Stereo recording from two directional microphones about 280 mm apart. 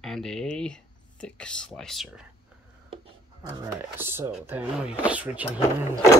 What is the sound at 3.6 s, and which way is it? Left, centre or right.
Speech, centre.